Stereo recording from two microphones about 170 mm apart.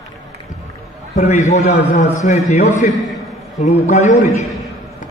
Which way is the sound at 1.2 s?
40° left (ahead or behind).